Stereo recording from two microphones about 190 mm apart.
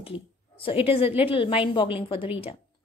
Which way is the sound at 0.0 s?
30° left (ahead or behind).